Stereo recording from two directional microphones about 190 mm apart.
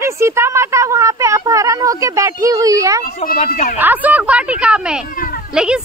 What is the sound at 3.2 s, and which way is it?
Speech, 40° left (ahead or behind).